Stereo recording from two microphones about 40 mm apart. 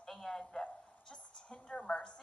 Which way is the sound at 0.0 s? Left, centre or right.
Centre.